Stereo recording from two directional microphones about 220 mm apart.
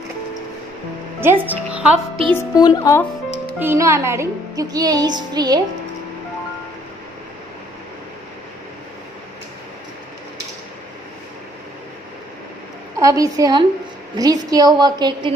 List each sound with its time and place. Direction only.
1.2 s speech: 10° right (ahead or behind)
1.7 s music: 5° right (ahead or behind)
2.3 s speech: 15° left (ahead or behind)
3.5 s speech: 10° right (ahead or behind)
13.0 s speech: 15° right (ahead or behind)